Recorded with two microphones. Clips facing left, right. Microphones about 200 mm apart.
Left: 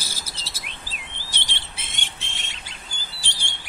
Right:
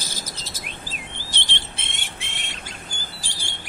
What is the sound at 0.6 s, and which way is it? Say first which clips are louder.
Chirp: right 4 dB; 45° right (ahead or behind).